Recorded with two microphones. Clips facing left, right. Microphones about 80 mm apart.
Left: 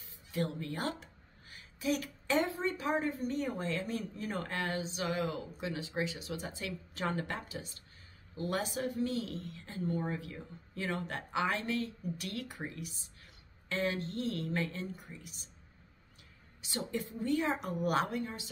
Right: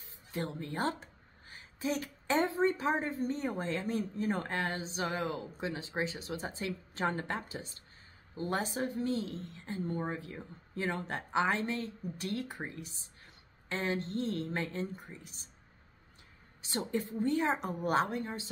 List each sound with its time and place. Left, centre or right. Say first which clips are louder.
0.0 s speech: left 2 dB; right
16.6 s speech: right 3 dB; right